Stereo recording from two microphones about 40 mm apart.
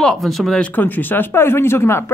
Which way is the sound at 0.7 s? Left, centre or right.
Left.